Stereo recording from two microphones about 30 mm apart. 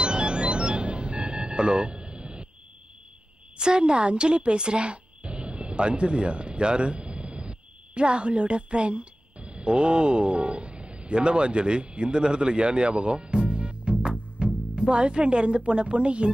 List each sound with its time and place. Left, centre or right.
0.0 s music: right
3.5 s speech: right